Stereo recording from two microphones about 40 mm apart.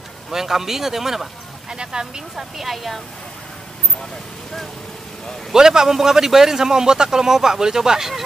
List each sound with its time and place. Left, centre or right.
0.3 s a man's voice: centre
2.5 s speech: centre
5.5 s a man's voice: centre